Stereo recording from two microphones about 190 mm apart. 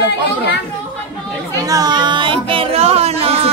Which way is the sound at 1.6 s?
20° right (ahead or behind).